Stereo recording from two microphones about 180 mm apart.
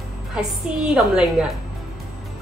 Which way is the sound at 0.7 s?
5° right (ahead or behind).